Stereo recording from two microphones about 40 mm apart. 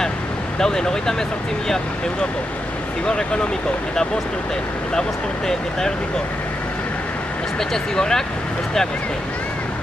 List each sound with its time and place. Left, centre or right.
0.6 s speech: centre
5.5 s speech: centre
7.7 s speech: centre